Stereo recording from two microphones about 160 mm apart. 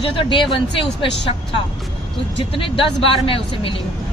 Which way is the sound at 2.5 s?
35° left (ahead or behind).